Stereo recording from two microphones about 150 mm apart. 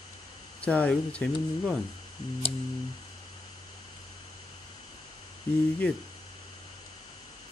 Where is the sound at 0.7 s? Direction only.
10° left (ahead or behind).